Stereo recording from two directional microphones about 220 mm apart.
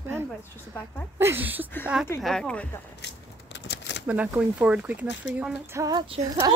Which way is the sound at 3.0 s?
50° left (ahead or behind).